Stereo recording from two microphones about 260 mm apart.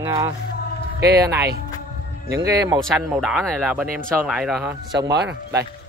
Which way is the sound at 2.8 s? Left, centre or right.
Centre.